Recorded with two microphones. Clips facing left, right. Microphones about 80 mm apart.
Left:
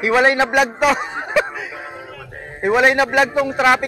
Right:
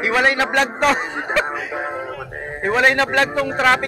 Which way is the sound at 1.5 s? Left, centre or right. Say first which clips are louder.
Right 5 dB; right.